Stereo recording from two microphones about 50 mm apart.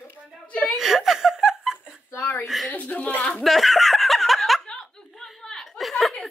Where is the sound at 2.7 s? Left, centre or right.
Left.